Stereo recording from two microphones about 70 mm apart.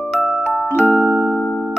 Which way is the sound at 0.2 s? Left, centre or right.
Centre.